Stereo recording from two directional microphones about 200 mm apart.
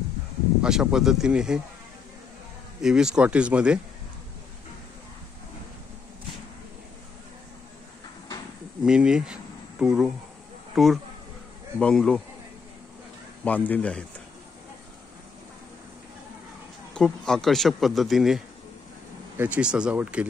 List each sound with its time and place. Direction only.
0.6 s a man's voice: 5° right (ahead or behind)
2.8 s a man's voice: 5° right (ahead or behind)
8.8 s a man's voice: 5° right (ahead or behind)
13.4 s a man's voice: 5° left (ahead or behind)
16.9 s a man's voice: 5° left (ahead or behind)